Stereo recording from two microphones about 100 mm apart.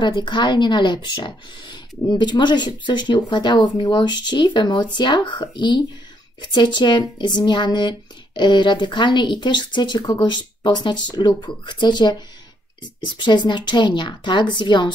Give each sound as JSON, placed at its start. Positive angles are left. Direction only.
{"t": 0.0, "sound": "speech", "side_deg": 50}